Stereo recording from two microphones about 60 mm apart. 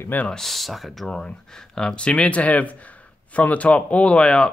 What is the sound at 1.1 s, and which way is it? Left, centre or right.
Speech, centre.